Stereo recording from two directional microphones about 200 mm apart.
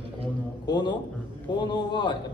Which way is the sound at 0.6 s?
20° left (ahead or behind).